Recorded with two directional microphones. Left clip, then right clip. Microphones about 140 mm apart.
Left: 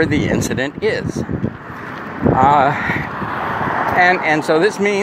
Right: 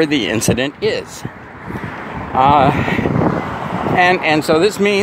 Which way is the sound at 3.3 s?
5° right (ahead or behind).